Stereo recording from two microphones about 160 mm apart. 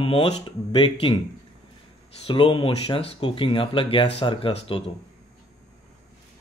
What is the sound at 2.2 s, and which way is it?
Speech, 35° left (ahead or behind).